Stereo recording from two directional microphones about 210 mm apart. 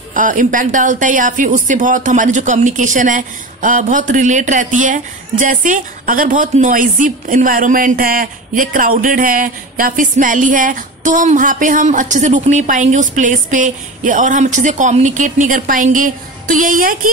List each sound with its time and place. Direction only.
0.1 s speech: 40° right (ahead or behind)